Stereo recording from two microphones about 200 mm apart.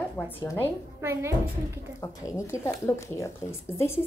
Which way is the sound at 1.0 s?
15° right (ahead or behind).